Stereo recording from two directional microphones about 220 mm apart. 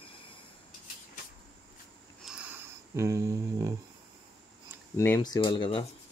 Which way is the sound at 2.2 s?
5° right (ahead or behind).